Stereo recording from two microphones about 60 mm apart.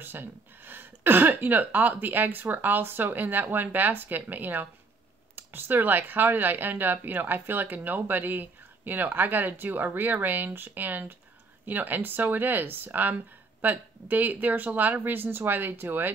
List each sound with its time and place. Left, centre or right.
0.0 s speech: right